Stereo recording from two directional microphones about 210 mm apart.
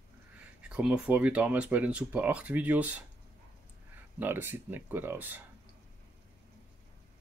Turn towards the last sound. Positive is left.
turn(degrees=-10)  # may be behind; listen again after turning